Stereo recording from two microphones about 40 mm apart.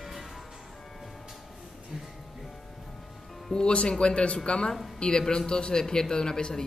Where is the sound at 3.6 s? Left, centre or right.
Left.